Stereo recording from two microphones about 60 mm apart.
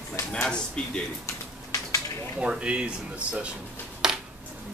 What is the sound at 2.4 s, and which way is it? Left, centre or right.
Speech, centre.